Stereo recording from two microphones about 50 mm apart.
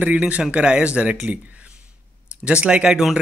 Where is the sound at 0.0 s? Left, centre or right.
Right.